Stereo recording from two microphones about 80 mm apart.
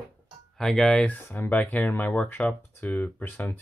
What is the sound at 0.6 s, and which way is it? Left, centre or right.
Speech, centre.